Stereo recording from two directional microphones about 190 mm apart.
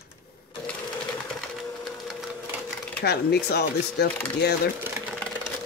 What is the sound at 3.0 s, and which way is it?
Speech, 60° left (ahead or behind).